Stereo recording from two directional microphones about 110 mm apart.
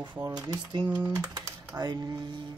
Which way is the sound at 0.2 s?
35° right (ahead or behind).